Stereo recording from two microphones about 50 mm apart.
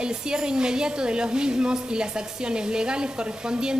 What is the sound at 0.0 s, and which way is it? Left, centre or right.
A woman's voice, centre.